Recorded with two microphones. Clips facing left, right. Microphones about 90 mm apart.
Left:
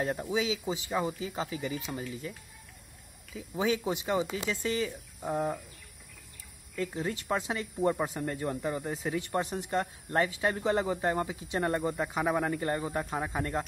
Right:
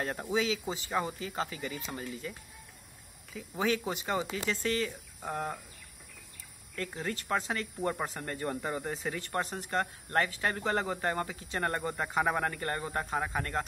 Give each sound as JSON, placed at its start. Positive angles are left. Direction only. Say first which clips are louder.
{"t": 0.3, "sound": "speech", "louder": "even", "side_deg": 10}
{"t": 3.3, "sound": "speech", "louder": "left 1 dB", "side_deg": 10}
{"t": 6.7, "sound": "speech", "louder": "left 3 dB", "side_deg": 10}
{"t": 9.2, "sound": "speech", "louder": "left 2 dB", "side_deg": 15}